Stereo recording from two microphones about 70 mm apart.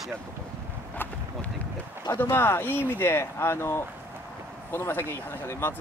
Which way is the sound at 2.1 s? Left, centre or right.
Left.